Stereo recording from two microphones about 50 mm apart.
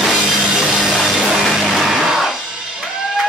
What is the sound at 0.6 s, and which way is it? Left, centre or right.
Music, centre.